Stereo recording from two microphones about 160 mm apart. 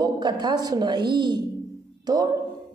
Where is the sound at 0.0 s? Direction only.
25° right (ahead or behind).